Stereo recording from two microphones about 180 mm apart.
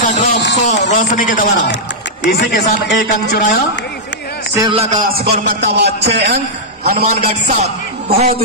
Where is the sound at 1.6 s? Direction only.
80° left.